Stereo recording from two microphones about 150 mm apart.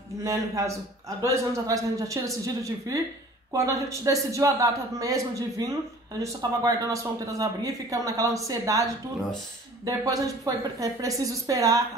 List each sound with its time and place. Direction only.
0.2 s a man's voice: 20° right (ahead or behind)
9.8 s a man's voice: 20° right (ahead or behind)